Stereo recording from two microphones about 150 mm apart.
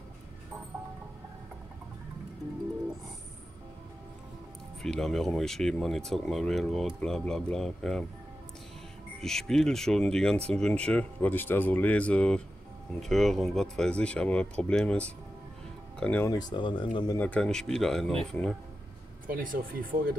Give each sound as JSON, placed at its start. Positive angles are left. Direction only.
{"t": 4.8, "sound": "speech", "side_deg": 5}
{"t": 9.2, "sound": "speech", "side_deg": 5}
{"t": 16.3, "sound": "speech", "side_deg": 25}
{"t": 17.2, "sound": "speech", "side_deg": 5}
{"t": 19.2, "sound": "speech", "side_deg": -70}